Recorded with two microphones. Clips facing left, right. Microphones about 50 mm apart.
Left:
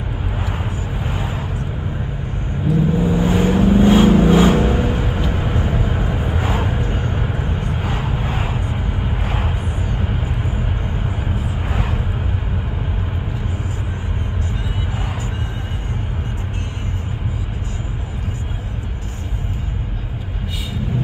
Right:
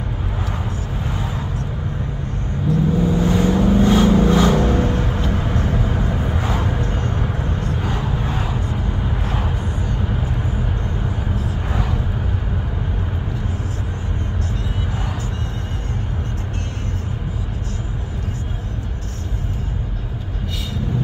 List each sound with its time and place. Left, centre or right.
1.0 s vehicle: left
2.7 s vehicle: centre